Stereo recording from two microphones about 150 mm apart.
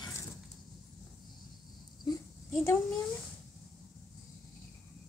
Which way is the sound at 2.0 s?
20° left (ahead or behind).